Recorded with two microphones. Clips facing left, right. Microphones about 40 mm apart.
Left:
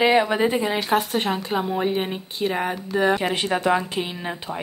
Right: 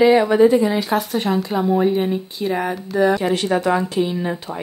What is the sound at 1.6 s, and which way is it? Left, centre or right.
Speech, centre.